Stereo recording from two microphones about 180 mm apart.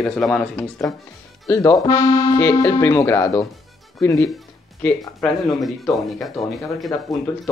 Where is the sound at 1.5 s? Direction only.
15° left (ahead or behind).